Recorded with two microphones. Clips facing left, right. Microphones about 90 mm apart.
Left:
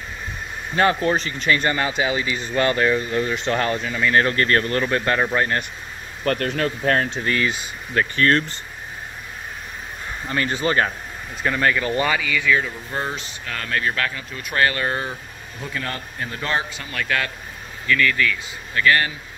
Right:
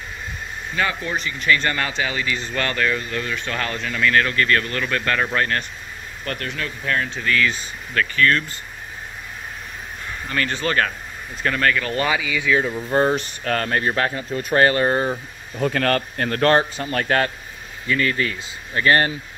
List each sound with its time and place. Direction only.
0.7 s speech: 40° left (ahead or behind)
1.6 s speech: 15° left (ahead or behind)
3.8 s speech: 15° left (ahead or behind)
4.1 s speech: 30° left (ahead or behind)
6.2 s speech: 40° left (ahead or behind)
7.2 s speech: 30° left (ahead or behind)
10.2 s speech: 20° left (ahead or behind)
12.1 s speech: 10° right (ahead or behind)
12.5 s speech: 30° right (ahead or behind)
13.1 s speech: 55° right (ahead or behind); by 15.1 s 30° right (ahead or behind)
15.6 s speech: 70° right (ahead or behind)
16.7 s speech: 40° right (ahead or behind)
17.8 s speech: 25° right (ahead or behind)